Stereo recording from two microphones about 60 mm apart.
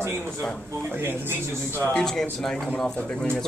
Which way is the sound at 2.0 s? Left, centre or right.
Centre.